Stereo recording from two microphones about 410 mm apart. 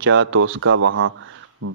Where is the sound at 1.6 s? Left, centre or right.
Right.